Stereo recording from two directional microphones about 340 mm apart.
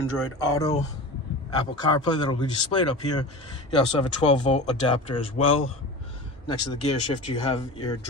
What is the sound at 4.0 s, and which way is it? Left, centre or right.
Speech, centre.